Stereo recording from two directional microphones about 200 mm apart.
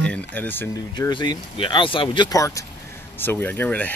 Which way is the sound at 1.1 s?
25° left (ahead or behind).